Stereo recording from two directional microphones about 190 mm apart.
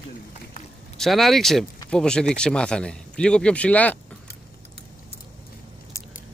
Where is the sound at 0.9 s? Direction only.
Centre (ahead or behind).